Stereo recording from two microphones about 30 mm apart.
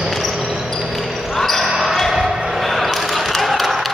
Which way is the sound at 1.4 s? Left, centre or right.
Centre.